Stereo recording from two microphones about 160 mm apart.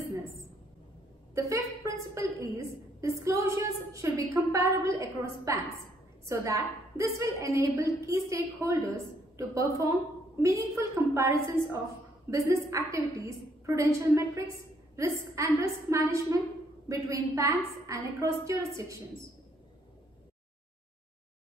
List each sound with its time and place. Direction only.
1.3 s a woman's voice: 20° right (ahead or behind)